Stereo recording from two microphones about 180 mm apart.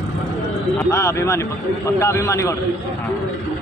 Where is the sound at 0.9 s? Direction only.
15° left (ahead or behind).